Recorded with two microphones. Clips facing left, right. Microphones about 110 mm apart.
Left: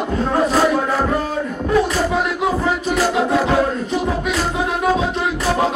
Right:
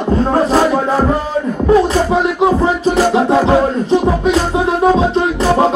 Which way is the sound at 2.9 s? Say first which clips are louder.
Right 5 dB; 30° right (ahead or behind).